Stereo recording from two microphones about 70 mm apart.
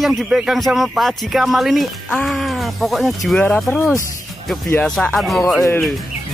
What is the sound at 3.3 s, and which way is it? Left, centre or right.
Speech, centre.